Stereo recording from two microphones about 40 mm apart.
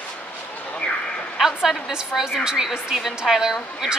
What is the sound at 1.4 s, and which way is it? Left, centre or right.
A woman's voice, centre.